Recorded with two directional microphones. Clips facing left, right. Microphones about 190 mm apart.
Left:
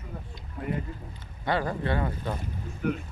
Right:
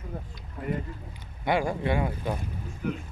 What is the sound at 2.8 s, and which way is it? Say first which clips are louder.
Speech: left 3 dB; 60° left (ahead or behind).